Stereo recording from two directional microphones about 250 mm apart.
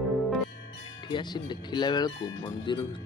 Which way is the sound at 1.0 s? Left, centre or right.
Centre.